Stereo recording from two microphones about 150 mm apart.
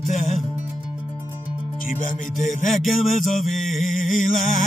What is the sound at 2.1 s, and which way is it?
Music, 65° left (ahead or behind).